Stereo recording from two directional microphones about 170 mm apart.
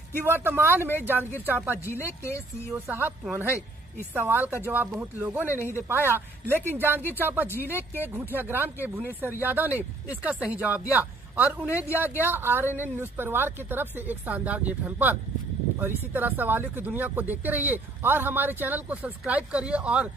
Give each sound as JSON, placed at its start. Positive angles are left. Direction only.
{"t": 0.3, "sound": "speech", "side_deg": -10}
{"t": 2.2, "sound": "speech", "side_deg": 15}
{"t": 2.9, "sound": "speech", "side_deg": -10}
{"t": 5.5, "sound": "speech", "side_deg": 15}
{"t": 5.8, "sound": "a man's voice", "side_deg": -15}